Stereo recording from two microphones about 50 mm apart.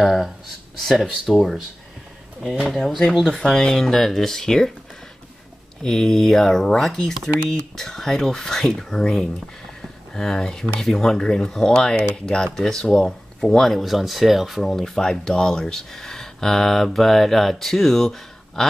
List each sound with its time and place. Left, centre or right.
0.0 s a sound: centre
0.7 s speech: centre
2.9 s speech: centre
5.8 s speech: centre